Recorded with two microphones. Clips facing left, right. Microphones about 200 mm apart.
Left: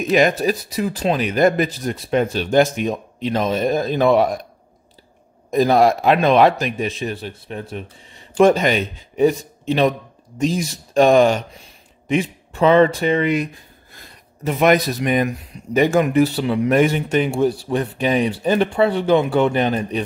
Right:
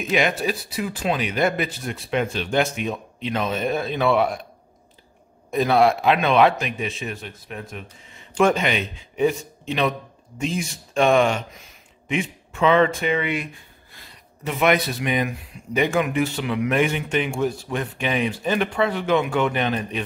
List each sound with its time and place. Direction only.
0.0 s speech: 40° left (ahead or behind)
5.5 s speech: 40° left (ahead or behind)